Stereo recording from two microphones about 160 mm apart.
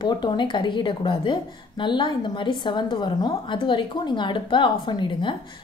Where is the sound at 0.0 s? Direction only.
30° left (ahead or behind).